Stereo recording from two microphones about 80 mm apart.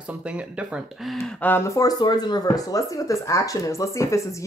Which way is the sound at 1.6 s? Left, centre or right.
Left.